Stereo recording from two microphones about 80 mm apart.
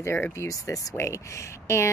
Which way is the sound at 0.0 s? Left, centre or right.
Left.